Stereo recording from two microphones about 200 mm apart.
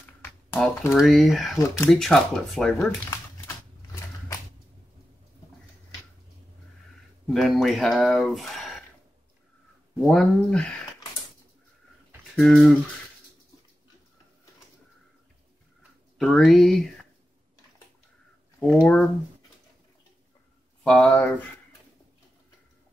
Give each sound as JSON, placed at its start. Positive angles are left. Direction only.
{"t": 0.5, "sound": "speech", "side_deg": 10}
{"t": 0.9, "sound": "speech", "side_deg": 0}
{"t": 3.1, "sound": "a sound", "side_deg": 15}
{"t": 7.3, "sound": "speech", "side_deg": 0}
{"t": 9.9, "sound": "speech", "side_deg": 5}
{"t": 12.4, "sound": "speech", "side_deg": 0}
{"t": 16.2, "sound": "speech", "side_deg": 5}
{"t": 18.7, "sound": "speech", "side_deg": 5}
{"t": 20.8, "sound": "speech", "side_deg": 5}